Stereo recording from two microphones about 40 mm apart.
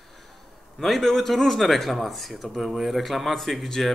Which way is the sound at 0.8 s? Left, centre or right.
Centre.